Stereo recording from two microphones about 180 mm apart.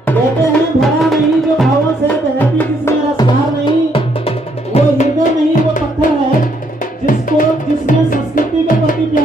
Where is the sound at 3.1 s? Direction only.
25° left (ahead or behind).